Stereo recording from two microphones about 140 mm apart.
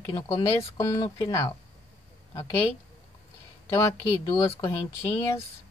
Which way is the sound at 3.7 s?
20° left (ahead or behind).